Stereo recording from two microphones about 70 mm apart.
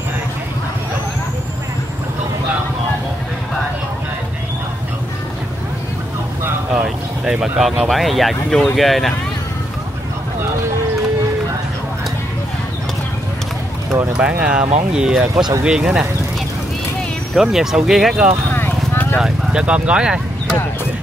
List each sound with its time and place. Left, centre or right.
6.7 s a sound: centre
7.5 s speech: centre
14.1 s speech: centre
17.3 s speech: centre
18.5 s clip-clop: left
19.1 s speech: centre
19.6 s speech: centre